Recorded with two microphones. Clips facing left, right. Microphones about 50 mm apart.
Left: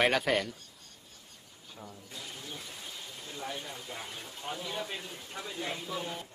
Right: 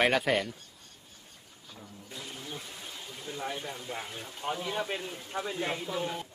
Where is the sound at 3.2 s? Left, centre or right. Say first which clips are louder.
Right 4 dB; centre.